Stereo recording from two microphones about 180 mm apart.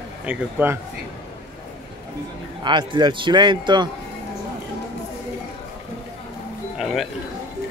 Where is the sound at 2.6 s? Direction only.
25° right (ahead or behind).